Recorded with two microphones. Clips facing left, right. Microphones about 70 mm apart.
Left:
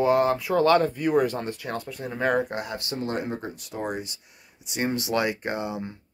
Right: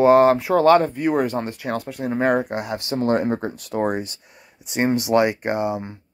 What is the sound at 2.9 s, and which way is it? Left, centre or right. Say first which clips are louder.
Speech: right 10 dB; right.